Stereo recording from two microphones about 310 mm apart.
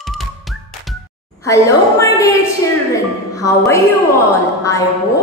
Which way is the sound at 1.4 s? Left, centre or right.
Centre.